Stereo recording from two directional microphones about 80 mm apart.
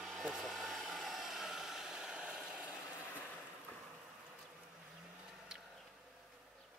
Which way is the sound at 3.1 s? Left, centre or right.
Centre.